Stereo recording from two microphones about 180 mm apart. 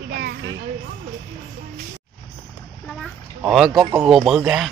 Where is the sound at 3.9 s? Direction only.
Centre (ahead or behind).